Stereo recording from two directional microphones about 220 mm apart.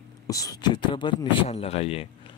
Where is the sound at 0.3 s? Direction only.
15° left (ahead or behind).